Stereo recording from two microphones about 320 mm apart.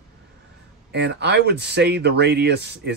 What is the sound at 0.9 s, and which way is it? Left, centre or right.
Speech, right.